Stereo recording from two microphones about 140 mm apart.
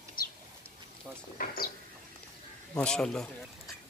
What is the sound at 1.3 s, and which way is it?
Speech, 90° left.